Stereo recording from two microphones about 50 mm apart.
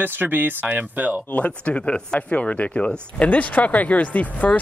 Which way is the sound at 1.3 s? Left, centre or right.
Left.